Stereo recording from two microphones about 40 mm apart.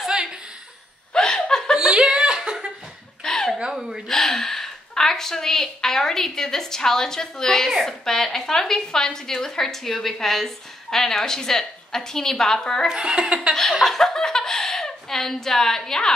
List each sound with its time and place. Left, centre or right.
0.0 s chuckle: centre
1.1 s chuckle: centre
1.8 s chuckle: centre
3.3 s a sound: centre
3.7 s a sound: centre
4.1 s a woman's voice: centre
12.9 s speech: right
13.8 s speech: centre